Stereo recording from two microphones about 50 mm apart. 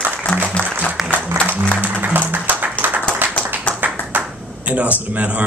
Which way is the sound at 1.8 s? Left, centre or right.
Right.